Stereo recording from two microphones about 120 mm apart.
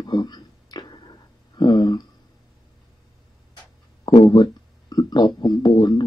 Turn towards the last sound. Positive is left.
turn(degrees=35)  # may be behind; listen again after turning